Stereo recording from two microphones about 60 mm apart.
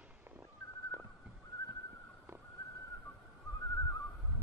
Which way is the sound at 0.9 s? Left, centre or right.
Right.